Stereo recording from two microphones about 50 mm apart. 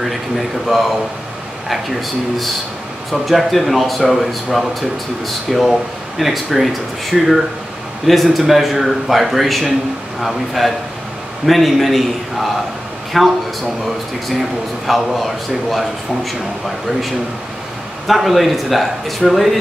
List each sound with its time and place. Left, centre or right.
0.0 s speech: centre
14.9 s speech: centre
18.0 s speech: centre